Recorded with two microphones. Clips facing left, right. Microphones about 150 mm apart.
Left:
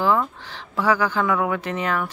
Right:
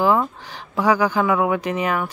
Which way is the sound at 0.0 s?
15° right (ahead or behind).